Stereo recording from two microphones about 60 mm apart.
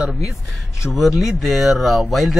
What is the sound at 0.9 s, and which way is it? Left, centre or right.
Speech, centre.